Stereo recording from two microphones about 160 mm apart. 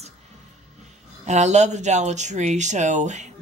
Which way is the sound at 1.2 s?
45° right (ahead or behind).